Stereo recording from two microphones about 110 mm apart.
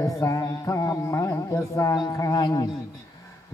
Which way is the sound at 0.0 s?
30° left (ahead or behind).